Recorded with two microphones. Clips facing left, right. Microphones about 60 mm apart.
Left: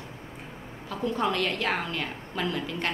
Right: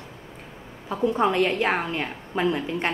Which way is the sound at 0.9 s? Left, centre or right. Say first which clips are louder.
Right 6 dB; right.